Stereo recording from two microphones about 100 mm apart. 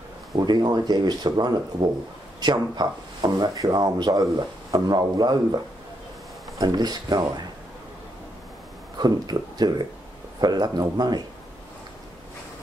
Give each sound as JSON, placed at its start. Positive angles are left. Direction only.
{"t": 0.4, "sound": "speech", "side_deg": -40}
{"t": 6.6, "sound": "speech", "side_deg": -45}
{"t": 8.9, "sound": "speech", "side_deg": -40}